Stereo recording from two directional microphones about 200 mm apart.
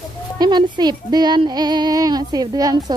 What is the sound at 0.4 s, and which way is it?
A woman's voice, 20° right (ahead or behind).